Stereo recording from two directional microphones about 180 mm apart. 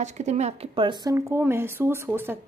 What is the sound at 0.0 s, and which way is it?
Speech, 40° right (ahead or behind).